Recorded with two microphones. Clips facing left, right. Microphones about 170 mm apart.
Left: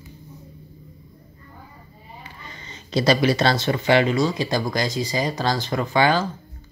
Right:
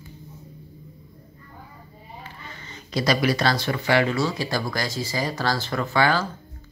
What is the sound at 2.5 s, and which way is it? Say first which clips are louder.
Speech: left 4 dB; 20° left (ahead or behind).